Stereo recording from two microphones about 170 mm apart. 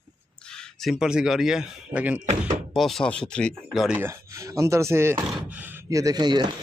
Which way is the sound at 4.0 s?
15° right (ahead or behind).